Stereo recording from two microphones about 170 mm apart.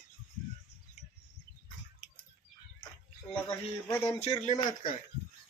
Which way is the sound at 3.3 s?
15° left (ahead or behind).